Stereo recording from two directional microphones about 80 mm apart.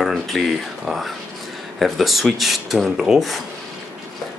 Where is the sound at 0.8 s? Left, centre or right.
Centre.